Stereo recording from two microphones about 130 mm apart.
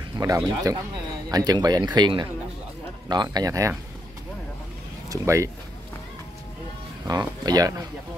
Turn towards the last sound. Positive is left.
turn(degrees=-30)  # may be behind; listen again after turning